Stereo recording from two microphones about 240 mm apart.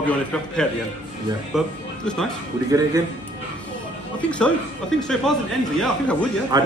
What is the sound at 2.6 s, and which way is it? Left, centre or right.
Speech, centre.